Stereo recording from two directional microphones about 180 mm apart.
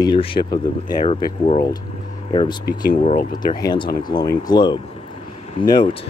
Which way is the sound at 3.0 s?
40° left (ahead or behind).